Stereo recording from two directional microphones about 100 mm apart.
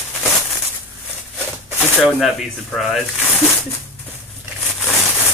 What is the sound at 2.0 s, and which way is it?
Speech, centre (ahead or behind).